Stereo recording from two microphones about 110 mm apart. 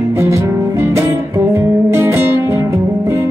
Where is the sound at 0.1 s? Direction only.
25° right (ahead or behind).